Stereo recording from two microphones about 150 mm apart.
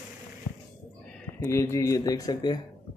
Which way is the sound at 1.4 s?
20° left (ahead or behind).